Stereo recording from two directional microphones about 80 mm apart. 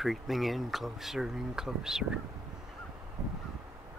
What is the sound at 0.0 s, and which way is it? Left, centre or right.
Speech, centre.